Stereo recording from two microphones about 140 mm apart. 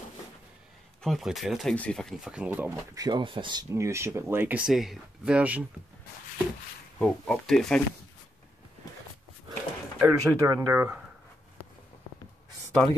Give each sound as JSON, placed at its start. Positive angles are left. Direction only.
{"t": 1.0, "sound": "speech", "side_deg": 0}
{"t": 3.7, "sound": "speech", "side_deg": -20}
{"t": 7.0, "sound": "speech", "side_deg": 5}
{"t": 10.0, "sound": "speech", "side_deg": -20}